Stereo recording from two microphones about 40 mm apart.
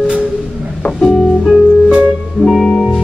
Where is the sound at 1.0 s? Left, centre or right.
Centre.